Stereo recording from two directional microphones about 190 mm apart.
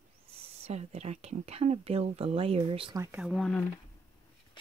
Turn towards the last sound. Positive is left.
turn(degrees=0)  # may be behind; listen again after turning